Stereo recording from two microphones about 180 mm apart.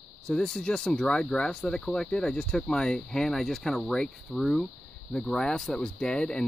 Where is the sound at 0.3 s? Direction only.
5° left (ahead or behind).